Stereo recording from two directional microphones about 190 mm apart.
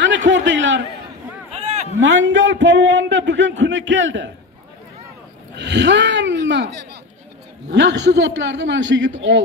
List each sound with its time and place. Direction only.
0.3 s a man's voice: 70° right (ahead or behind)
2.0 s a man's voice: 75° right (ahead or behind)
5.6 s a man's voice: 70° right (ahead or behind)